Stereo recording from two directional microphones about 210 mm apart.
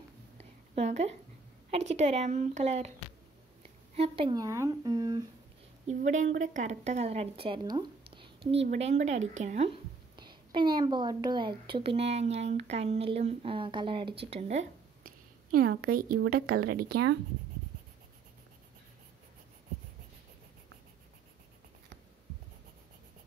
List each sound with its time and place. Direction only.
0.4 s a sound: 30° right (ahead or behind)
1.9 s a woman's voice: 30° right (ahead or behind)
3.9 s speech: 25° right (ahead or behind)
5.9 s a woman's voice: 35° right (ahead or behind)
8.1 s a sound: 25° right (ahead or behind)
8.6 s a woman's voice: 30° right (ahead or behind); by 17.2 s 50° right (ahead or behind)